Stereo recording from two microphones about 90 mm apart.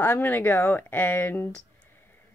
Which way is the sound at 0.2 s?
25° left (ahead or behind).